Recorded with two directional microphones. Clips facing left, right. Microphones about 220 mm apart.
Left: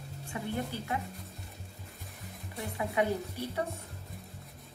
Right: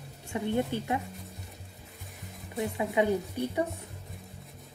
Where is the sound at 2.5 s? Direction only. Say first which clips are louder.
Right 4 dB; 20° right (ahead or behind).